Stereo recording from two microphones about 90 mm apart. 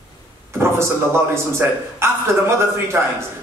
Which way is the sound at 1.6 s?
25° right (ahead or behind).